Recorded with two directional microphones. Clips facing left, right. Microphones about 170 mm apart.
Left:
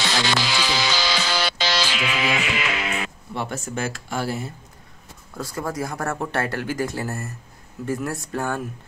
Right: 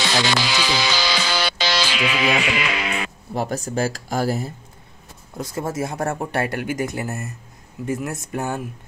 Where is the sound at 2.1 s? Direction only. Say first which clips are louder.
Right 4 dB; 80° right.